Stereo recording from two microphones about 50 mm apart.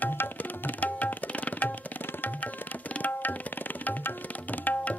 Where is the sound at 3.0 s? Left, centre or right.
Left.